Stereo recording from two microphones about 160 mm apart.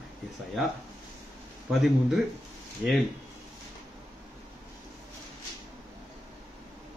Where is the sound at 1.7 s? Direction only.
Centre (ahead or behind).